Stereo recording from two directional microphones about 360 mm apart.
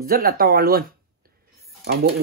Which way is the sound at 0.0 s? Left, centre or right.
Right.